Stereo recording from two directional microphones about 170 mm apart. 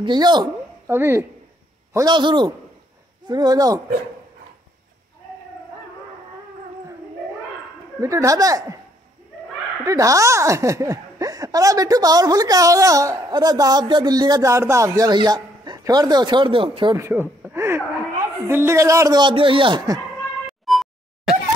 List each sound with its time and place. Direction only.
0.0 s speech: 25° right (ahead or behind)
0.9 s speech: 15° right (ahead or behind)
2.0 s speech: 25° right (ahead or behind)
8.0 s speech: 20° right (ahead or behind)
9.8 s speech: 20° right (ahead or behind)
16.9 s speech: 15° right (ahead or behind)
20.4 s a sound: centre (ahead or behind)